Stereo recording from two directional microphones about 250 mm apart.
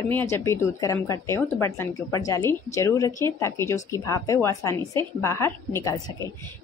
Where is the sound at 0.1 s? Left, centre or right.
Centre.